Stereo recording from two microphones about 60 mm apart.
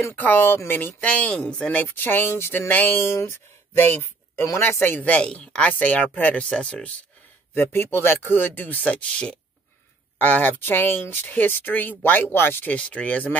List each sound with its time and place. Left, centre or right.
0.1 s speech: left
1.0 s speech: left
2.0 s speech: left
2.7 s speech: left
3.1 s speech: left
5.0 s speech: centre
7.5 s speech: left
8.8 s speech: centre
10.1 s speech: left
12.6 s speech: left